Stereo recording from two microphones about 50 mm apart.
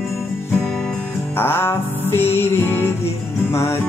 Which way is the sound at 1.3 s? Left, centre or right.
Left.